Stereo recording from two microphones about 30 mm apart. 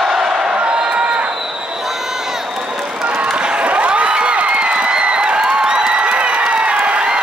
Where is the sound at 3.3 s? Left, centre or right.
Right.